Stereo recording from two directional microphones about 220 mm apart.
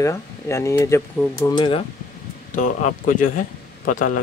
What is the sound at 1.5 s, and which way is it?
Speech, 20° left (ahead or behind).